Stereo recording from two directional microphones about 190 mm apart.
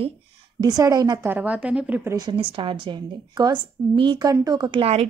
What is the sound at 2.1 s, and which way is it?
A woman's voice, 25° right (ahead or behind).